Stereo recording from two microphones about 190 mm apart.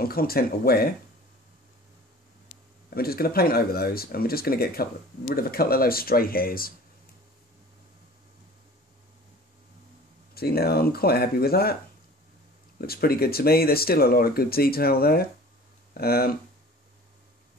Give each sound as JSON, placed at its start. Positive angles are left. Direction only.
{"t": 0.0, "sound": "speech", "side_deg": 50}
{"t": 2.9, "sound": "speech", "side_deg": 55}
{"t": 10.3, "sound": "speech", "side_deg": 55}
{"t": 12.8, "sound": "speech", "side_deg": 55}